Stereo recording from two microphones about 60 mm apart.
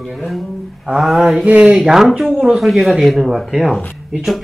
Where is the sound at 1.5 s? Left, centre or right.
Right.